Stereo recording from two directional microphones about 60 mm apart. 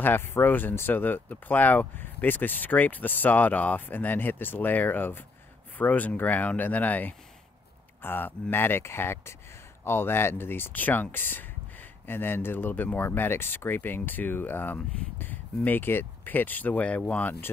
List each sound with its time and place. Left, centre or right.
0.0 s speech: left